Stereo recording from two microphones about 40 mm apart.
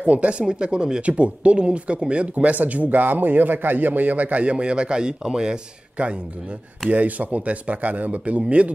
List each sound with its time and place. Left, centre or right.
0.0 s speech: right
1.0 s speech: right
6.0 s speech: right